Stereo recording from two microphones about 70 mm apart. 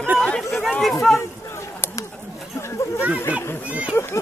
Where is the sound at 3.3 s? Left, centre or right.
Centre.